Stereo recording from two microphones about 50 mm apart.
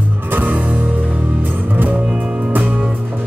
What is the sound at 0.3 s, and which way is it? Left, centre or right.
Music, right.